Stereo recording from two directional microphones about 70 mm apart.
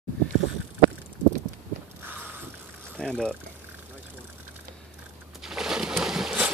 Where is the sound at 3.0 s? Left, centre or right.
Centre.